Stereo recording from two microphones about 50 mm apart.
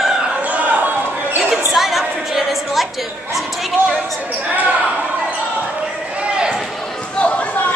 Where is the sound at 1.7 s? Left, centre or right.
Centre.